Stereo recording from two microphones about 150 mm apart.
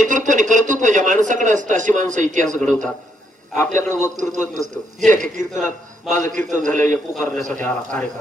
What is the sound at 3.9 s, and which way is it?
Speech, 55° right (ahead or behind).